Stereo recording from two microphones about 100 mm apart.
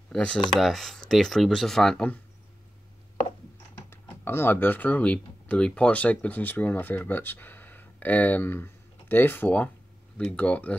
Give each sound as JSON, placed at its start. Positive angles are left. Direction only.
{"t": 0.1, "sound": "speech", "side_deg": 10}
{"t": 3.9, "sound": "speech", "side_deg": 20}